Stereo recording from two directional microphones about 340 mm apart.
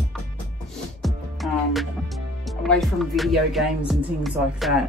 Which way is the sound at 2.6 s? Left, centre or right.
Centre.